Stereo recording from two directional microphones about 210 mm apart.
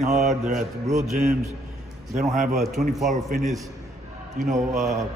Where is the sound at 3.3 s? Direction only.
35° right (ahead or behind).